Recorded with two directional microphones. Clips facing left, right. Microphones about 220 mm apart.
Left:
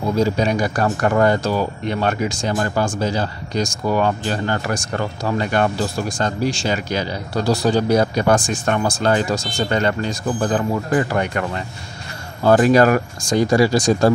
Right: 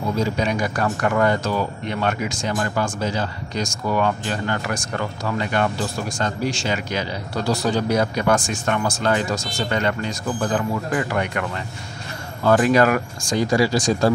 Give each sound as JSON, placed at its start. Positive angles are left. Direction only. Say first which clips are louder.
{"t": 0.2, "sound": "speech", "louder": "left 5 dB", "side_deg": 35}
{"t": 12.4, "sound": "speech", "louder": "left 3 dB", "side_deg": 35}
{"t": 13.4, "sound": "speech", "louder": "left 3 dB", "side_deg": 50}